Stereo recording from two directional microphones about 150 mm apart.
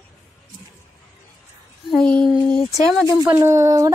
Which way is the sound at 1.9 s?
5° left (ahead or behind).